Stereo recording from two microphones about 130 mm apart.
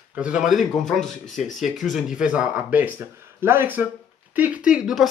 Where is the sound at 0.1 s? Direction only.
10° right (ahead or behind).